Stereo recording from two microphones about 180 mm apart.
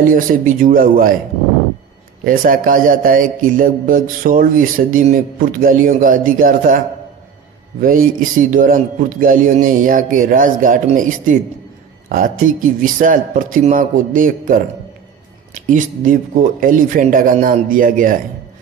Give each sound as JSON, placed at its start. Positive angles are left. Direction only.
{"t": 0.1, "sound": "speech", "side_deg": -50}
{"t": 2.2, "sound": "speech", "side_deg": -50}
{"t": 7.8, "sound": "speech", "side_deg": -50}
{"t": 15.7, "sound": "speech", "side_deg": -45}